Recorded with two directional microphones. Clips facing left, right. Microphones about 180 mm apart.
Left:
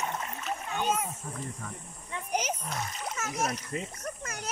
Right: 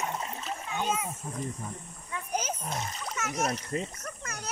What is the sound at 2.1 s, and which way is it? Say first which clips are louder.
Wild animals: left 1 dB; 15° left (ahead or behind).